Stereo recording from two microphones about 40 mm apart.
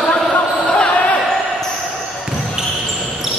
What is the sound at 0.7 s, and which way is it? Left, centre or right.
Basketball bounce, left.